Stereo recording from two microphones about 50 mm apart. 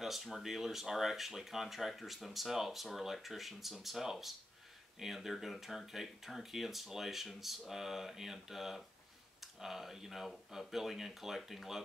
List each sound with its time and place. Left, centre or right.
0.0 s speech: centre